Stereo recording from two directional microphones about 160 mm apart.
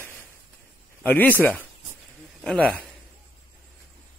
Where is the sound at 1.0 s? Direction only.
10° left (ahead or behind).